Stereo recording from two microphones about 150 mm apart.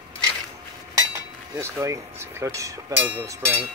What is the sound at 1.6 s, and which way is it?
Speech, 20° right (ahead or behind).